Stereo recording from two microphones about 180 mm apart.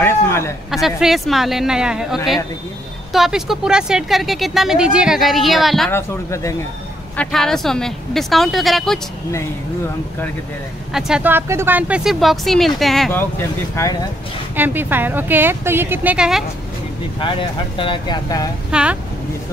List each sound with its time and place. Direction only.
0.0 s a sound: 15° left (ahead or behind)
0.7 s speech: centre (ahead or behind)
5.9 s speech: 15° left (ahead or behind)
7.2 s speech: centre (ahead or behind)
10.9 s speech: 5° right (ahead or behind)
13.8 s speech: 15° left (ahead or behind)
14.5 s a woman's voice: 10° right (ahead or behind)
17.2 s speech: 25° left (ahead or behind)
18.7 s speech: 5° right (ahead or behind)